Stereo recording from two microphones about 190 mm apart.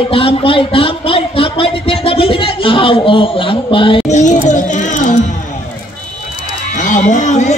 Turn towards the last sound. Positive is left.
turn(degrees=40)  # may be behind; listen again after turning